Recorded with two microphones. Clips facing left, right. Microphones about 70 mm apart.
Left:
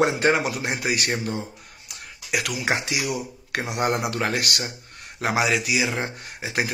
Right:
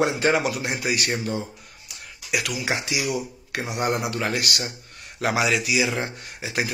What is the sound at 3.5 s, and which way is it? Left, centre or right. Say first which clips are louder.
Speech: left 2 dB; left.